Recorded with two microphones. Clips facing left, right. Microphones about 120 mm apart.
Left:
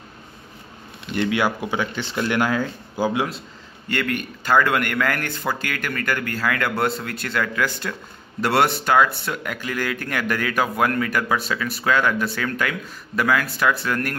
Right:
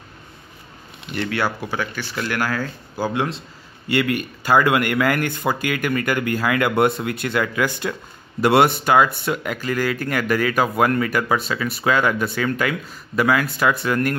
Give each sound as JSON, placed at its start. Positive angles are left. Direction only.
{"t": 1.1, "sound": "speech", "side_deg": 15}
{"t": 3.9, "sound": "speech", "side_deg": -10}